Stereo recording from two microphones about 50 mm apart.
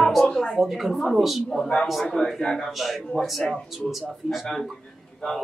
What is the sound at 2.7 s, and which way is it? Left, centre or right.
Speech, centre.